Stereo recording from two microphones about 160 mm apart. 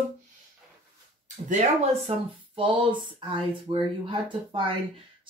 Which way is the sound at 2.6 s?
30° right (ahead or behind).